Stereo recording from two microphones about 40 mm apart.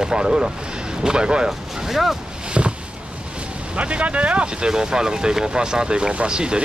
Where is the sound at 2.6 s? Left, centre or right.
Right.